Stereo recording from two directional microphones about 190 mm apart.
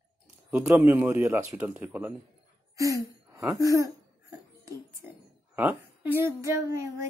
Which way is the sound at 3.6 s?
15° right (ahead or behind).